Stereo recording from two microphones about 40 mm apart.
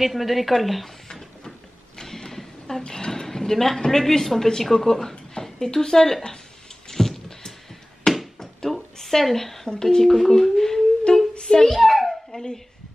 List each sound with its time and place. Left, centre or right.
0.0 s a woman's voice: centre
2.0 s a sound: centre
2.8 s a woman's voice: centre
6.9 s a sound: centre
9.7 s a child's voice: centre
12.3 s dog: centre